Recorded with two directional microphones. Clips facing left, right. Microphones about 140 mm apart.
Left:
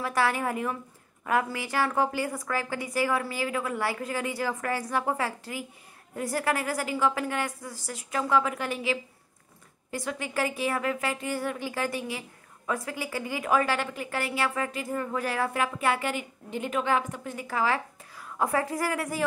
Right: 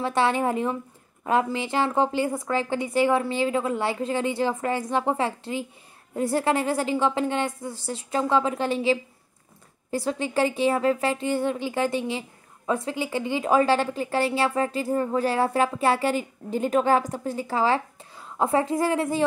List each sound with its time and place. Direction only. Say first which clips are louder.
0.0 s a woman's voice: right 4 dB; 25° right (ahead or behind)